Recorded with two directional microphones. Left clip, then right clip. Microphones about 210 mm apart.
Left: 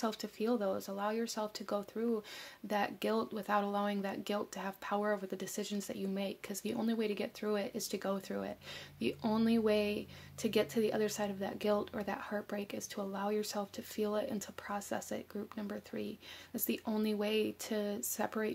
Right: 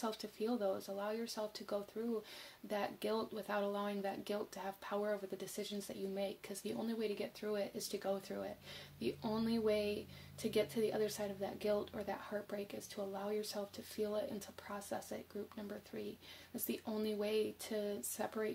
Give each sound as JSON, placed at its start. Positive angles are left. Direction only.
{"t": 0.0, "sound": "speech", "side_deg": 30}